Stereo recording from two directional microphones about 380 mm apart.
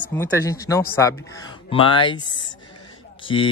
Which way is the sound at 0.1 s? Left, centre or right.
Centre.